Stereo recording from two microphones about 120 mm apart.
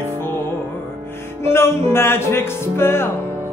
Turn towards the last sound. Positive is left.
turn(degrees=20)  # may be behind; listen again after turning